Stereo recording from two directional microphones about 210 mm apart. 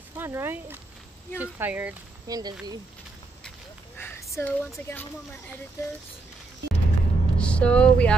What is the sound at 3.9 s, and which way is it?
A woman's voice, 10° left (ahead or behind).